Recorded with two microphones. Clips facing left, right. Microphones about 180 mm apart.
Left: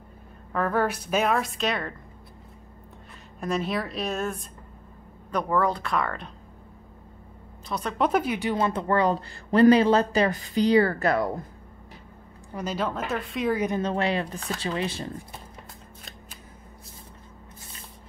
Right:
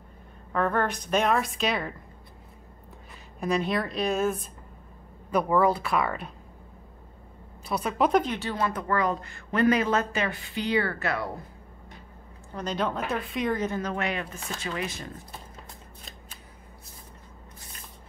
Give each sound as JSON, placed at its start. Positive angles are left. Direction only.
{"t": 0.5, "sound": "a woman's voice", "side_deg": 5}
{"t": 3.3, "sound": "a woman's voice", "side_deg": 0}
{"t": 7.6, "sound": "speech", "side_deg": -10}
{"t": 8.1, "sound": "speech", "side_deg": 10}
{"t": 12.5, "sound": "a woman's voice", "side_deg": 5}
{"t": 13.7, "sound": "speech", "side_deg": 30}